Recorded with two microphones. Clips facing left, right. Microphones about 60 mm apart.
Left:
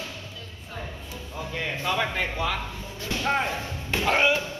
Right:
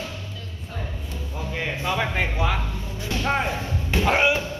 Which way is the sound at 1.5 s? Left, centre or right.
Centre.